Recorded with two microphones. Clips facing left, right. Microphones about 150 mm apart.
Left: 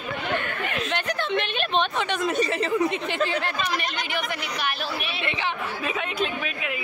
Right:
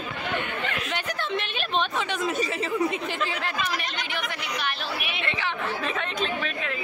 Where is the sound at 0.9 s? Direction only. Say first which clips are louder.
Left 5 dB; 5° right (ahead or behind).